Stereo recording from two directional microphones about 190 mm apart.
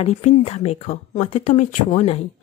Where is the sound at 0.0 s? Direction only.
35° left (ahead or behind).